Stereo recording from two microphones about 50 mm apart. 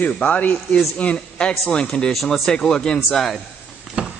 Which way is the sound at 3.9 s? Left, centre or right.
Centre.